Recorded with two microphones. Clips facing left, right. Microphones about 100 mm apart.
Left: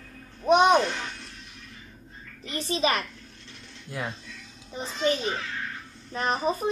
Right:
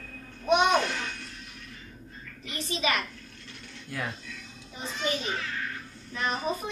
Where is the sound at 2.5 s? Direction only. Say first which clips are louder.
Left 4 dB; 35° left (ahead or behind).